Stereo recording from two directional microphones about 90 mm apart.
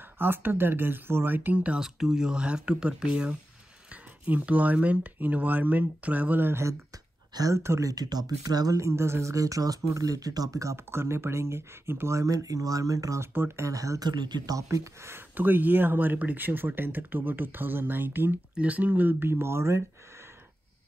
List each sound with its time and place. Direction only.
0.2 s speech: 25° right (ahead or behind)
7.3 s speech: 35° right (ahead or behind)
7.9 s speech: 45° right (ahead or behind); by 19.8 s 30° right (ahead or behind)